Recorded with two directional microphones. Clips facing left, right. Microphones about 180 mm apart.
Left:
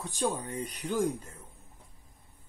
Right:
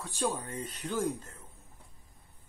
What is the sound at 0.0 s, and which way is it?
Speech, 15° left (ahead or behind).